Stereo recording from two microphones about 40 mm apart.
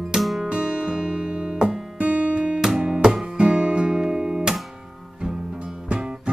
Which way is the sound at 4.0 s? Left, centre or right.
Centre.